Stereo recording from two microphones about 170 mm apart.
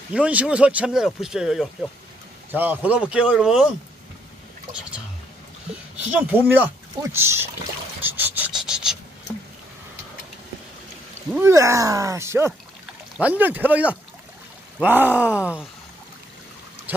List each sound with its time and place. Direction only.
0.1 s speech: 5° right (ahead or behind)
5.9 s speech: 10° right (ahead or behind)
8.0 s filing: 10° right (ahead or behind)
11.3 s speech: 15° right (ahead or behind)